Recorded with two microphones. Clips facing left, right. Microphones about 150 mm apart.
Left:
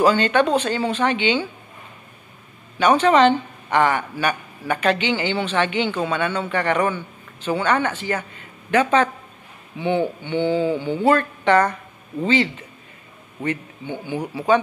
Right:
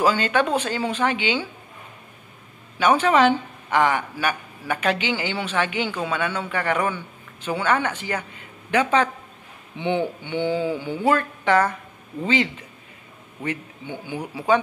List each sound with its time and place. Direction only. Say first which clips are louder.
0.0 s a woman's voice: left 3 dB; 10° right (ahead or behind)
2.8 s a woman's voice: left 3 dB; 10° right (ahead or behind)